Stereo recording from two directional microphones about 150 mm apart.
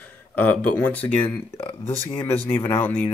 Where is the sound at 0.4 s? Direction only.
10° left (ahead or behind).